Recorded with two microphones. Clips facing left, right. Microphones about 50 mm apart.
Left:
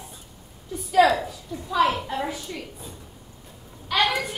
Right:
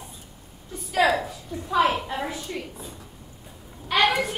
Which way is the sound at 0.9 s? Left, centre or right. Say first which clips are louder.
Left 3 dB; centre.